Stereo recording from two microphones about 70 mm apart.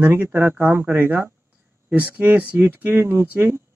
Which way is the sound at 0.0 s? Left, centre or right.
Right.